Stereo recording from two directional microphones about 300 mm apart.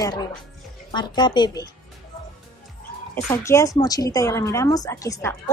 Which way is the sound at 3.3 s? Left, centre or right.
Centre.